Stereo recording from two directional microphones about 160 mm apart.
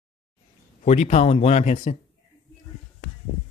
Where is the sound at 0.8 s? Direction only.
45° left (ahead or behind).